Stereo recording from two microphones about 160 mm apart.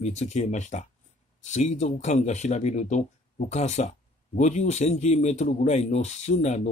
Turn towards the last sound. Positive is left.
turn(degrees=45)  # may be behind; listen again after turning